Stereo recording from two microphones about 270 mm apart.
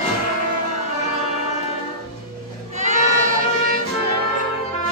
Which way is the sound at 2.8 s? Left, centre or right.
Right.